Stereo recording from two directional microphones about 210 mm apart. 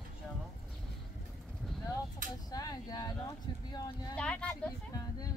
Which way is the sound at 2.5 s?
20° left (ahead or behind).